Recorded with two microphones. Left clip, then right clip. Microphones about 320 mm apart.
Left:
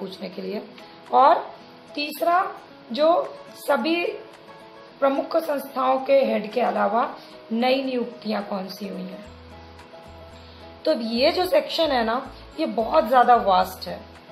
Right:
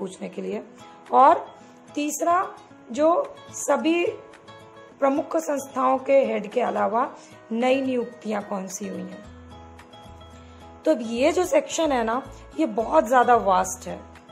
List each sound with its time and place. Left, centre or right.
0.0 s a woman's voice: right
3.6 s a woman's voice: right
10.8 s a woman's voice: right